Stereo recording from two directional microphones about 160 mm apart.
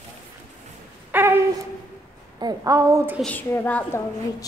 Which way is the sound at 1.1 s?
15° right (ahead or behind).